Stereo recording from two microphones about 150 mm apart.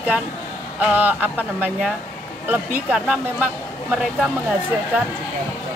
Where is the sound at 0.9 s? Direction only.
10° right (ahead or behind).